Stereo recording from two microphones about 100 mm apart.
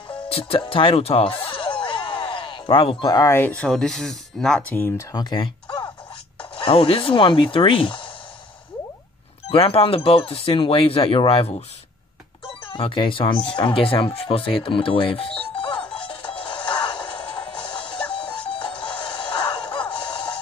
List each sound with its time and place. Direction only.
0.3 s music: 65° left (ahead or behind)
3.1 s speech: 35° left (ahead or behind)
3.3 s speech: 15° left (ahead or behind)
4.7 s speech: 20° left (ahead or behind)
5.1 s speech: 45° left (ahead or behind)
9.5 s speech: 70° left (ahead or behind)
12.6 s speech: 60° left (ahead or behind)
15.5 s music: 55° left (ahead or behind)